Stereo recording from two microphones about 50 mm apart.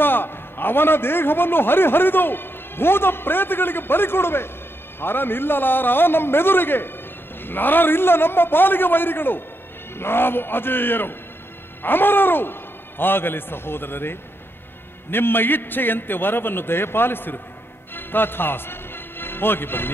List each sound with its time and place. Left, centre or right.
0.0 s a man's voice: left
17.9 s music: left